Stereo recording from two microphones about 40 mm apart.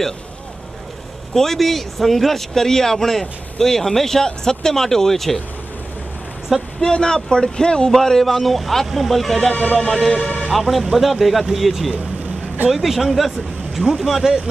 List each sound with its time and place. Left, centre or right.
1.3 s speech: centre
6.8 s speech: centre
7.9 s speech: centre
9.5 s speech: left
9.8 s speech: centre
10.5 s speech: centre